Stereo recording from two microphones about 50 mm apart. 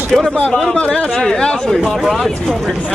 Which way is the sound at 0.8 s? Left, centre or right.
Centre.